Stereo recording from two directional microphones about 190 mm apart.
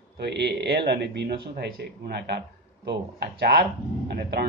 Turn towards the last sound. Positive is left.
turn(degrees=-60)  # may be behind; listen again after turning